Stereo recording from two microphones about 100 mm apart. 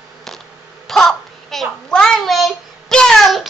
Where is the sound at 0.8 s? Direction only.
5° left (ahead or behind).